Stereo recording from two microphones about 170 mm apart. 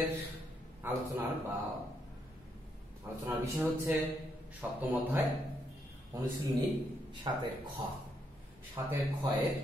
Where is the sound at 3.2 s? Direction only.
15° right (ahead or behind).